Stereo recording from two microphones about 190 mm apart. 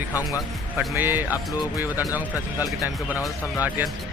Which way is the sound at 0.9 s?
10° right (ahead or behind).